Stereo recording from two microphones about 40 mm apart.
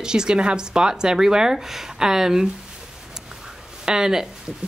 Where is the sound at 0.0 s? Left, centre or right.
Centre.